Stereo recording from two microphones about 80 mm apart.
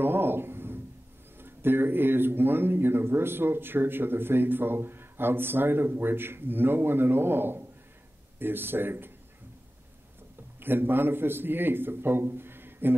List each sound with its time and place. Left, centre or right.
0.0 s speech: right
10.6 s speech: right